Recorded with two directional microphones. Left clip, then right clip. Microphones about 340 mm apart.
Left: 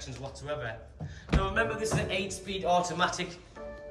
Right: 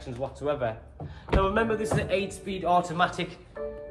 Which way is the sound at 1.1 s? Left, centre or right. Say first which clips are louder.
Right 6 dB; centre.